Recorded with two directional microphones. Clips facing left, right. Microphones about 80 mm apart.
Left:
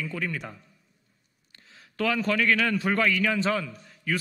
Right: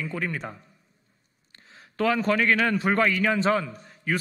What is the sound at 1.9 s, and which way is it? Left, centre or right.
A man's voice, right.